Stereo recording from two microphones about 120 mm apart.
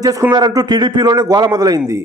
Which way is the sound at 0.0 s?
30° right (ahead or behind).